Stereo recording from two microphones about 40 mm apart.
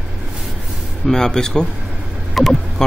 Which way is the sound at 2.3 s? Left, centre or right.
Centre.